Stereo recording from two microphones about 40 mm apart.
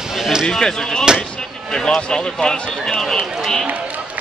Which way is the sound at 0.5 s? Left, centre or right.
Centre.